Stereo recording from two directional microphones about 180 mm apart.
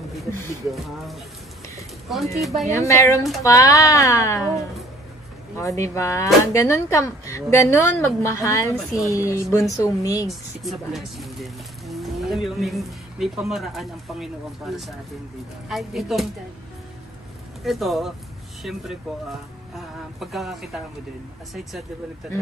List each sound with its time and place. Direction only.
2.3 s speech: centre (ahead or behind)
2.6 s speech: 15° left (ahead or behind)
5.6 s speech: 15° left (ahead or behind)
10.6 s speech: centre (ahead or behind)
17.6 s speech: centre (ahead or behind)
20.2 s speech: centre (ahead or behind)